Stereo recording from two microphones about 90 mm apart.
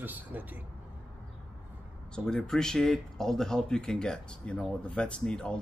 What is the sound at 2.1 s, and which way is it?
Speech, 10° left (ahead or behind).